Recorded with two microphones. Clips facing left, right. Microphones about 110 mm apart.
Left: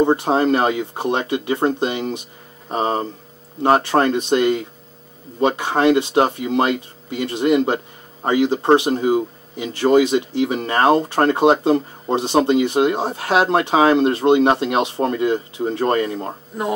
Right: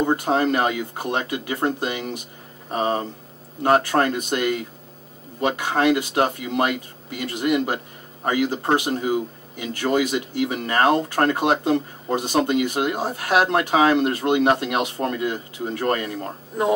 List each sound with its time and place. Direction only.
0.0 s speech: 25° left (ahead or behind)